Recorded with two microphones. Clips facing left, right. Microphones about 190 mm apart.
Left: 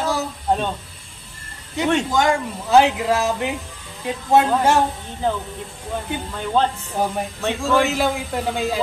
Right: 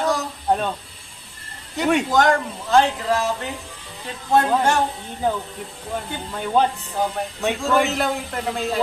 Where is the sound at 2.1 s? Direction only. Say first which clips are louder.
Right 1 dB; centre (ahead or behind).